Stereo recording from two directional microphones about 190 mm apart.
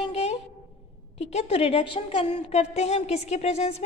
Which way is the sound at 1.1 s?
35° left (ahead or behind).